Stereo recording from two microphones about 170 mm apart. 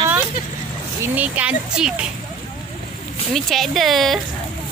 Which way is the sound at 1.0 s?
10° right (ahead or behind).